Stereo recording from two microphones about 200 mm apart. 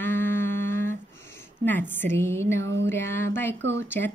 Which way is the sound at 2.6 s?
65° right (ahead or behind).